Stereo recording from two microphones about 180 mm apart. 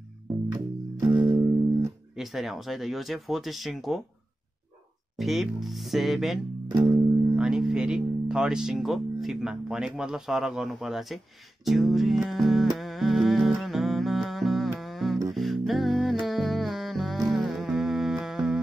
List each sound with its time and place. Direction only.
0.5 s music: 25° right (ahead or behind)
2.1 s speech: centre (ahead or behind)
5.1 s speech: centre (ahead or behind)
11.6 s music: centre (ahead or behind)